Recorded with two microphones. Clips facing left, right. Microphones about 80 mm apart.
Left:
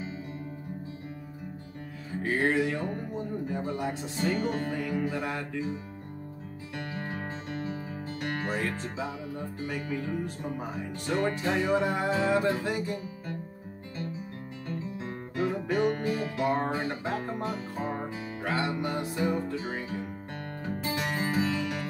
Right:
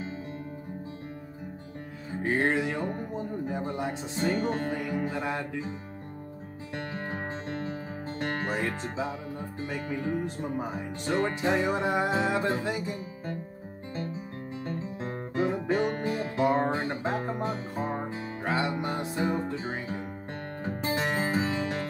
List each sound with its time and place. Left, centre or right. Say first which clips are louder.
2.2 s speech: even; right
6.7 s music: right 1 dB; right
8.5 s speech: right 1 dB; right
14.7 s music: even; right